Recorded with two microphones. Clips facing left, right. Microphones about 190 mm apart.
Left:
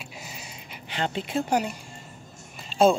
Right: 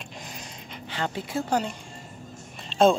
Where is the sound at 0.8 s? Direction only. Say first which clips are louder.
Left 2 dB; 20° left (ahead or behind).